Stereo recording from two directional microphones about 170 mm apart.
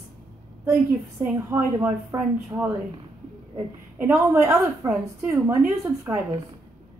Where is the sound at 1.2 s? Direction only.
10° right (ahead or behind).